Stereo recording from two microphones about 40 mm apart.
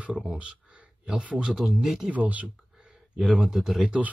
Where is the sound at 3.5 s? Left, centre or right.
Centre.